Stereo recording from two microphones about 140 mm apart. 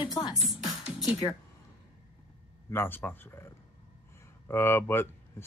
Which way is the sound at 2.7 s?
15° left (ahead or behind).